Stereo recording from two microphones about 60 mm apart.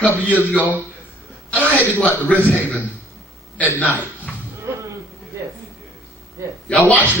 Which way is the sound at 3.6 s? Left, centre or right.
Left.